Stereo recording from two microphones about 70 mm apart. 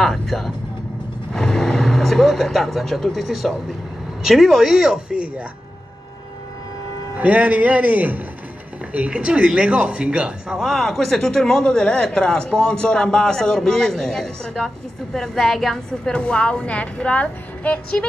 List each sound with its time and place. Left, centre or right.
0.0 s vehicle: centre
4.2 s speech: centre
7.2 s a man's voice: right
10.6 s a woman's voice: centre